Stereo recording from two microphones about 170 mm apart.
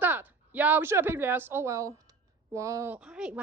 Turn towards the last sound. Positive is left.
turn(degrees=-5)  # may be behind; listen again after turning